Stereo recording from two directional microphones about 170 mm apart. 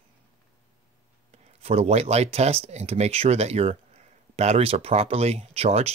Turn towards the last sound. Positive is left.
turn(degrees=-35)  # may be behind; listen again after turning